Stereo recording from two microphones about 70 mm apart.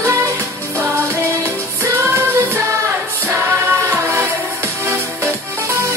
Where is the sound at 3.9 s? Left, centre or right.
Right.